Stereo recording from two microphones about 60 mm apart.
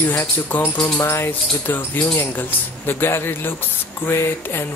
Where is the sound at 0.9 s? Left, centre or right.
Left.